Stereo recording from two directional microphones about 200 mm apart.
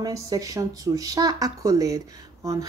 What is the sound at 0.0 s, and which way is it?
A woman's voice, 20° right (ahead or behind).